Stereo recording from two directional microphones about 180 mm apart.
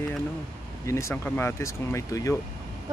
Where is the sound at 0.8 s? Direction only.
15° left (ahead or behind).